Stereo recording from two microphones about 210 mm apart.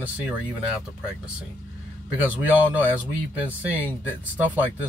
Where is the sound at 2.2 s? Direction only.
5° right (ahead or behind).